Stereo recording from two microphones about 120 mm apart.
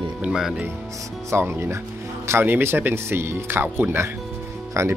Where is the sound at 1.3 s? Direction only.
20° right (ahead or behind).